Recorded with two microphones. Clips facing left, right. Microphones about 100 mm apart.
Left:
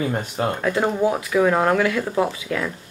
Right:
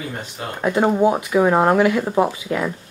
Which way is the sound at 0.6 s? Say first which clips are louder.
Right 6 dB; 20° right (ahead or behind).